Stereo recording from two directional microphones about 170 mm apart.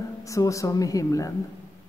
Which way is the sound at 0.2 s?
20° left (ahead or behind).